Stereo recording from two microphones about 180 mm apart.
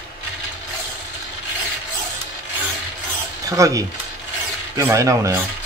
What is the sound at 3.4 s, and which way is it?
Speech, 20° right (ahead or behind).